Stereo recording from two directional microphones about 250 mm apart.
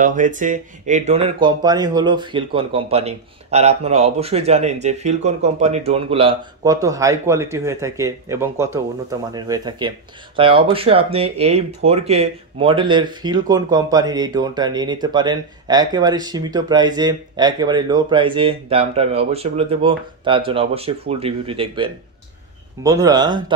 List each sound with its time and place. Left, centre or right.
0.0 s speech: right; by 23.4 s centre